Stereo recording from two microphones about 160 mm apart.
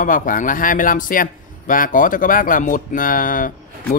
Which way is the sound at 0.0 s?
60° left (ahead or behind).